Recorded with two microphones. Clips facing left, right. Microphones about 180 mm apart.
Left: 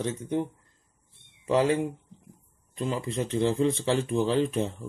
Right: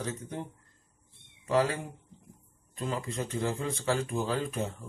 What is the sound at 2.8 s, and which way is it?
Speech, 25° left (ahead or behind).